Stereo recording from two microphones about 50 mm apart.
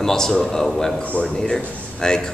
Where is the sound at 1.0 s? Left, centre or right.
Left.